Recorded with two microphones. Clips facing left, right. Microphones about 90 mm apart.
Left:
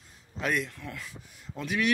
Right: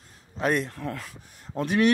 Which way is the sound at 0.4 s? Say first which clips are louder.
Right 5 dB; 40° right (ahead or behind).